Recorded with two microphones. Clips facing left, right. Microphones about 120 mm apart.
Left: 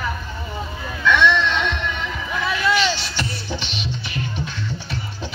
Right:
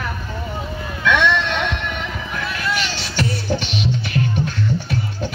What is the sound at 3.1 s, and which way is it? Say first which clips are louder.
Music: right 6 dB; 50° right (ahead or behind).